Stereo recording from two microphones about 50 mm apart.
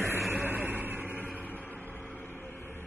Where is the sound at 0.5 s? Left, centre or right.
Right.